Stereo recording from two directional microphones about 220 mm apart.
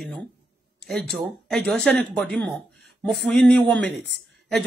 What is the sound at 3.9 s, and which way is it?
Speech, 50° right (ahead or behind).